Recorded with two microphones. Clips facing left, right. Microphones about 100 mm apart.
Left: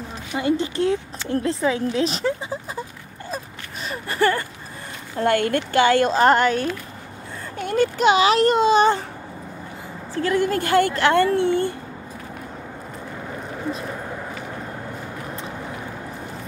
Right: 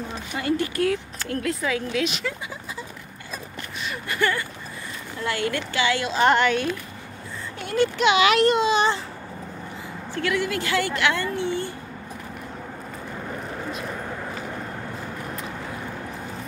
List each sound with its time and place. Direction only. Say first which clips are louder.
0.3 s speech: left 3 dB; 20° left (ahead or behind)
3.8 s a woman's voice: left 4 dB; 35° left (ahead or behind)
5.1 s speech: left 7 dB; 50° left (ahead or behind)
10.1 s a woman's voice: left 4 dB; 40° left (ahead or behind)
11.1 s speech: left 8 dB; 55° left (ahead or behind)
13.2 s a sound: left 3 dB; centre (ahead or behind)